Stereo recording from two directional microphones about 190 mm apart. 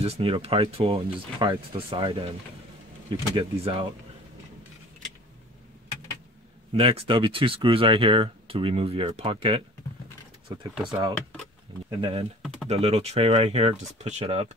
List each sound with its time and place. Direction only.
0.0 s speech: 30° right (ahead or behind)
6.7 s speech: 30° right (ahead or behind)
10.9 s speech: 25° right (ahead or behind)
12.4 s speech: centre (ahead or behind)
12.6 s speech: 35° right (ahead or behind)